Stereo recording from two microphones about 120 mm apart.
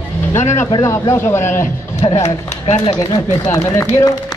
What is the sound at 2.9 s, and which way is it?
Speech, 35° left (ahead or behind).